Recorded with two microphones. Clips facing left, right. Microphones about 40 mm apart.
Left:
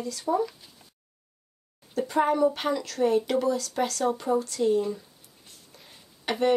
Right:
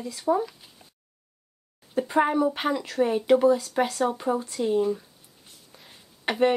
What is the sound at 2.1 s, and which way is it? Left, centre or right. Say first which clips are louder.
Speech: even; centre.